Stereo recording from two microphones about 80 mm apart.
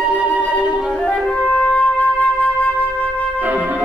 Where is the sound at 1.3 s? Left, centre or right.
Centre.